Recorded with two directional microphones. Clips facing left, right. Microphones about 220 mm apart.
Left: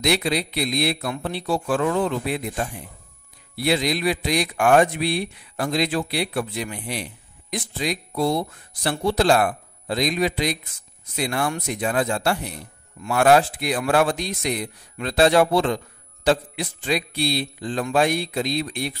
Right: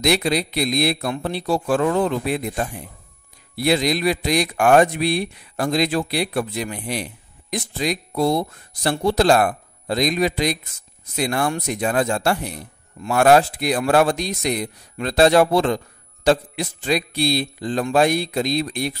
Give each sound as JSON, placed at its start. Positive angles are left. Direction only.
{"t": 0.0, "sound": "a man's voice", "side_deg": -45}
{"t": 3.5, "sound": "a man's voice", "side_deg": -45}